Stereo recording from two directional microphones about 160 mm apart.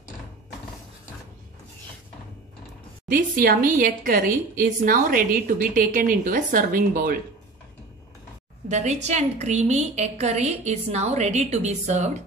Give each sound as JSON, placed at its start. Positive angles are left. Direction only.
{"t": 3.1, "sound": "a woman's voice", "side_deg": -60}
{"t": 8.6, "sound": "a woman's voice", "side_deg": -45}